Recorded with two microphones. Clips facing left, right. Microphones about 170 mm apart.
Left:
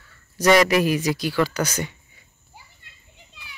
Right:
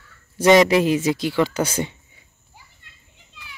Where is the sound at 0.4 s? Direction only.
25° right (ahead or behind).